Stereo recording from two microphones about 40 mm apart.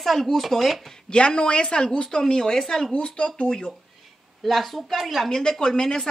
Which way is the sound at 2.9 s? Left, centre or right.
Left.